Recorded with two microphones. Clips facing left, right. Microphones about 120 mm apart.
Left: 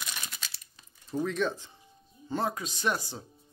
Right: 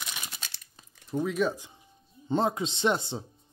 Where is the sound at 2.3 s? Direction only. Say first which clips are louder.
Right 5 dB; 20° right (ahead or behind).